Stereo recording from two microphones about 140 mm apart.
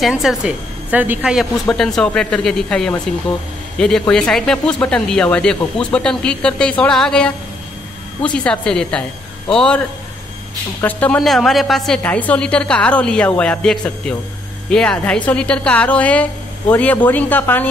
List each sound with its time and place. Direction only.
0.0 s a woman's voice: centre (ahead or behind)